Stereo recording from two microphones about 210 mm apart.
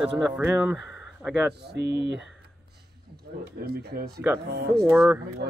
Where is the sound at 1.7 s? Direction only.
55° right (ahead or behind).